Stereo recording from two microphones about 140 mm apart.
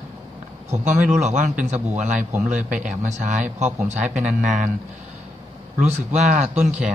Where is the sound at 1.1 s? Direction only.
55° right (ahead or behind).